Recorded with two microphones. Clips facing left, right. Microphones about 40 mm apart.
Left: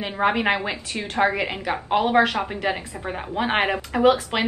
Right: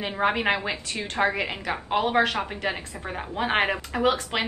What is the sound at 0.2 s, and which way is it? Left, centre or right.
A woman's voice, centre.